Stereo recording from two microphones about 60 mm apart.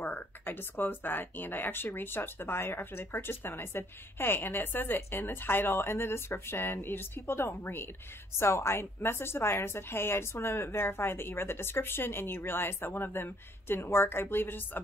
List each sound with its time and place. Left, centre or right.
0.0 s speech: left